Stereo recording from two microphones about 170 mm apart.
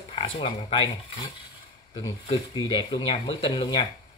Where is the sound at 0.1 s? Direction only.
30° left (ahead or behind).